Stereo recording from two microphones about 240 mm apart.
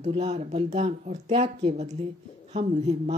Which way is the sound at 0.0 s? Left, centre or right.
Right.